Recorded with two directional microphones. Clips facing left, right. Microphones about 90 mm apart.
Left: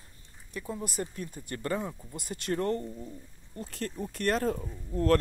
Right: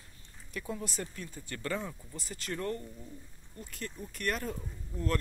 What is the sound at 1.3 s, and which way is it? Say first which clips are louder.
Speech: left 4 dB; 50° left (ahead or behind).